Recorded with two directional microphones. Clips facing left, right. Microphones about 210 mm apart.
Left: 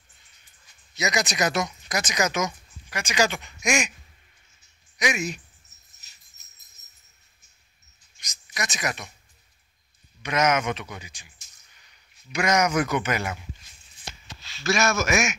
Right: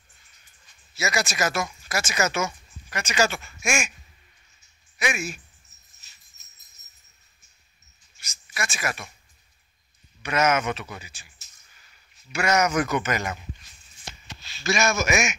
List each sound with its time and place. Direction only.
0.9 s speech: 15° left (ahead or behind)
4.9 s speech: 20° left (ahead or behind)
8.5 s speech: 20° left (ahead or behind)
10.2 s speech: 10° left (ahead or behind)
14.6 s speech: centre (ahead or behind)